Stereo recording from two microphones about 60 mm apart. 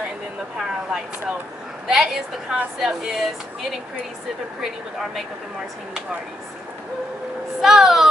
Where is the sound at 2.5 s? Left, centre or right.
Centre.